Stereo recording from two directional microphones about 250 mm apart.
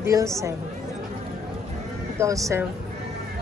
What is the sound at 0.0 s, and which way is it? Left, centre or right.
Speech, centre.